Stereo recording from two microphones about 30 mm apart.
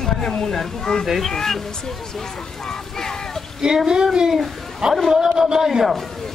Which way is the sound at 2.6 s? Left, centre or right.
Centre.